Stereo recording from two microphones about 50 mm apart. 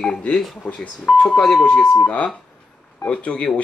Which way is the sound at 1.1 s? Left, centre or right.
Centre.